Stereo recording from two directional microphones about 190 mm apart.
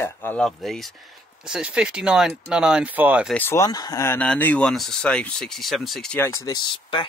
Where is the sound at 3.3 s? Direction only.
10° left (ahead or behind).